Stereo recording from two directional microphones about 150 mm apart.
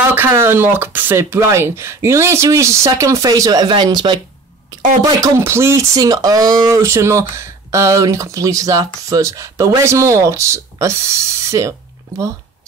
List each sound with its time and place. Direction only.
0.1 s speech: 15° right (ahead or behind)
5.0 s speech: 20° right (ahead or behind)